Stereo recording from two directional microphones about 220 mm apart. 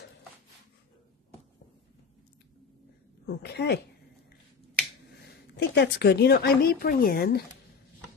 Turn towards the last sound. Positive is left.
turn(degrees=40)  # may be behind; listen again after turning